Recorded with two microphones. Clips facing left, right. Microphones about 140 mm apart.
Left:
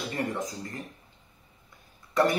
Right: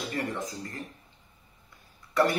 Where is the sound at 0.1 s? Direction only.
20° left (ahead or behind).